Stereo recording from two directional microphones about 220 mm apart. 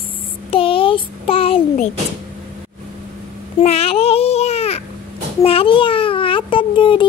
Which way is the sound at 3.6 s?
30° left (ahead or behind).